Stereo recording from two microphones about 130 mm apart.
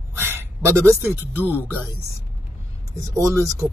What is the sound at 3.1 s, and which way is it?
Speech, 25° right (ahead or behind).